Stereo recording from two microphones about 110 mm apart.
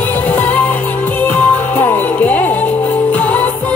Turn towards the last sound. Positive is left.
turn(degrees=15)  # may be behind; listen again after turning